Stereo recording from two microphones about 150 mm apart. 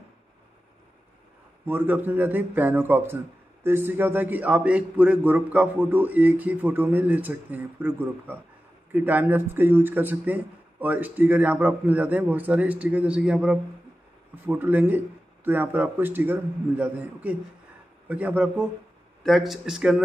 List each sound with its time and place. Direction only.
1.7 s a man's voice: 15° right (ahead or behind)